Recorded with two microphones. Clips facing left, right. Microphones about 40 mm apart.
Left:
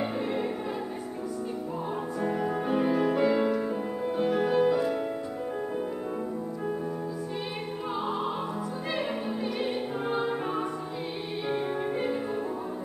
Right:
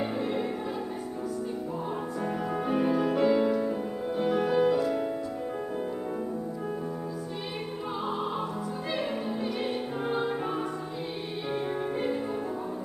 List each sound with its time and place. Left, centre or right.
0.0 s music: centre
2.2 s music: centre
4.7 s music: centre
7.9 s music: centre
9.6 s music: centre